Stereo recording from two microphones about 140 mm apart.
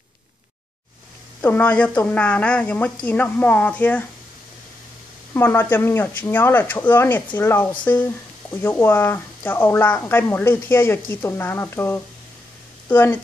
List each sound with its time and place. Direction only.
1.4 s a woman's voice: 10° left (ahead or behind)
5.3 s a woman's voice: 15° left (ahead or behind)